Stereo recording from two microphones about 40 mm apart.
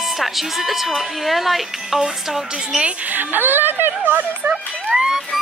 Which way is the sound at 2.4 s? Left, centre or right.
Centre.